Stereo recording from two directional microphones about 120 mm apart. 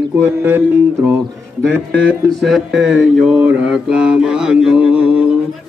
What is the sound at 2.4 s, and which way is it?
Mantra, centre (ahead or behind).